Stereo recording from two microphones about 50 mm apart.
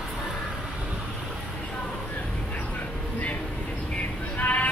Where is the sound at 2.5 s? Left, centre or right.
Left.